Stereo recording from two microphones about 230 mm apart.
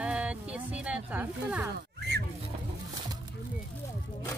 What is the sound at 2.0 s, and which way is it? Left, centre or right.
Fowl, right.